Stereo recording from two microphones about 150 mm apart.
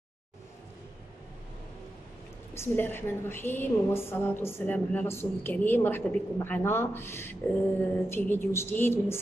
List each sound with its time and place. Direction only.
2.5 s a woman's voice: 15° left (ahead or behind)